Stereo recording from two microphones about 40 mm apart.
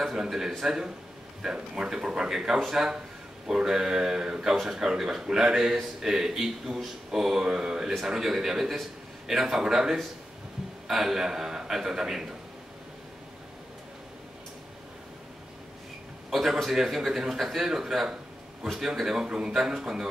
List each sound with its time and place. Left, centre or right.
0.0 s a man's voice: centre
16.3 s a sound: centre
16.7 s a man's voice: centre; by 19.5 s right
19.5 s a man's voice: centre